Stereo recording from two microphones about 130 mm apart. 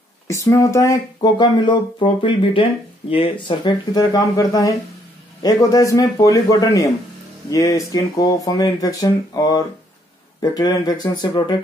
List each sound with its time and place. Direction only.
0.3 s speech: 20° left (ahead or behind)